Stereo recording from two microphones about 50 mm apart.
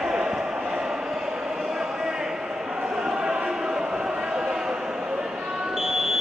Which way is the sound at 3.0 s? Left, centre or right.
Centre.